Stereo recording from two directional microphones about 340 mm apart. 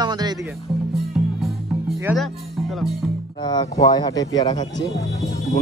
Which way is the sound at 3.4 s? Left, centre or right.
Centre.